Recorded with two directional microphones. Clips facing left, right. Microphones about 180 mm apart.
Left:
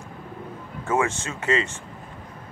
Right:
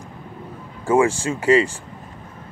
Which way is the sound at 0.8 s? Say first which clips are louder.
Right 7 dB; 30° right (ahead or behind).